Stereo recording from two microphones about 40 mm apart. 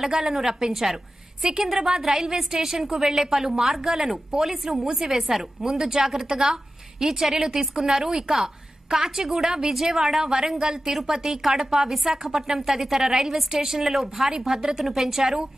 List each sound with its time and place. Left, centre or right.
0.2 s a woman's voice: centre